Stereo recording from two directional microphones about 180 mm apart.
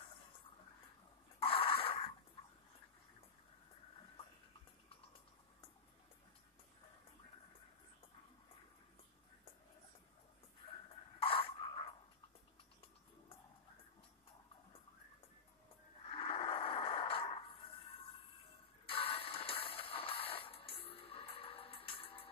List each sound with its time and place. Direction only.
1.4 s dog: 30° left (ahead or behind)
11.1 s a sound: 30° left (ahead or behind)
16.1 s music: 30° left (ahead or behind)
18.9 s music: 30° left (ahead or behind)